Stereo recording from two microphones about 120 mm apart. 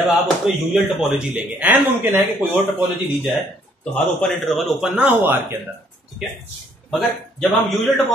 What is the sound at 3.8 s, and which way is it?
Speech, 5° left (ahead or behind).